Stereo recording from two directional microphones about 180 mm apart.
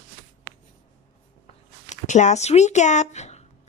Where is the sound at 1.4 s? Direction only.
40° left (ahead or behind).